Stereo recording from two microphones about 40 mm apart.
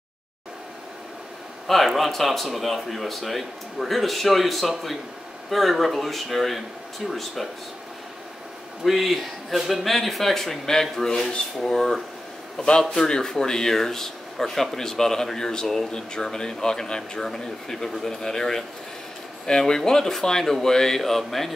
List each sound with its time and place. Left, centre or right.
1.9 s speech: centre
8.8 s speech: centre
19.6 s speech: centre